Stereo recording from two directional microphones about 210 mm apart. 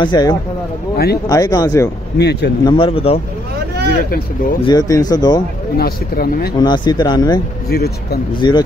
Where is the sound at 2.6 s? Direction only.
25° left (ahead or behind).